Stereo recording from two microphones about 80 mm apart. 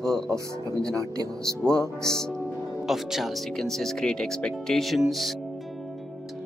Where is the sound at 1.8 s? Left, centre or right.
Left.